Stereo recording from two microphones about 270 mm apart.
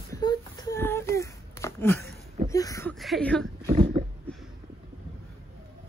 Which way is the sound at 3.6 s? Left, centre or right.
Centre.